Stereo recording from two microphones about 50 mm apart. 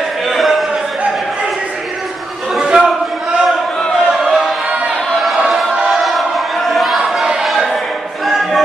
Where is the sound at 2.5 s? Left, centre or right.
Centre.